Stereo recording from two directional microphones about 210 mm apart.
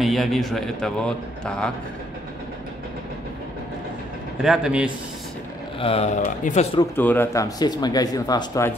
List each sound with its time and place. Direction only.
0.0 s a man's voice: centre (ahead or behind)
4.4 s a man's voice: 5° right (ahead or behind)
5.8 s speech: 30° left (ahead or behind)
7.0 s speech: 10° left (ahead or behind)